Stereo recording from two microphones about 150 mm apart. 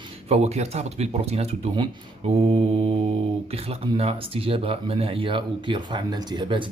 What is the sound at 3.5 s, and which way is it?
Speech, 40° right (ahead or behind).